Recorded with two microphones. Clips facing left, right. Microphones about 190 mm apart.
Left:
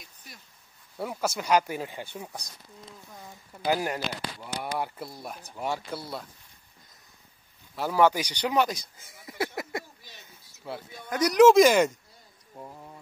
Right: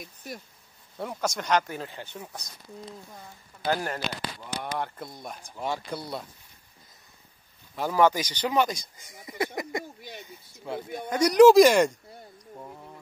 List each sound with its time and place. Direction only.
0.0 s speech: 50° right (ahead or behind)
0.9 s speech: 5° left (ahead or behind)
3.6 s speech: 10° left (ahead or behind)
7.7 s speech: 10° left (ahead or behind)
11.1 s speech: centre (ahead or behind)